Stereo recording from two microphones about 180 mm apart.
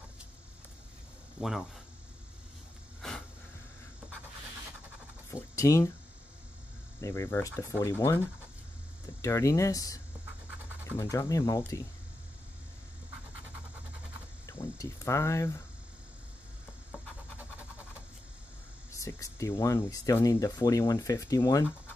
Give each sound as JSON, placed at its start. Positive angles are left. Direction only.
{"t": 1.4, "sound": "speech", "side_deg": -5}
{"t": 3.0, "sound": "a sound", "side_deg": 5}
{"t": 5.3, "sound": "speech", "side_deg": 15}
{"t": 7.0, "sound": "speech", "side_deg": 15}
{"t": 9.2, "sound": "speech", "side_deg": 15}
{"t": 14.4, "sound": "speech", "side_deg": 15}
{"t": 18.9, "sound": "speech", "side_deg": 15}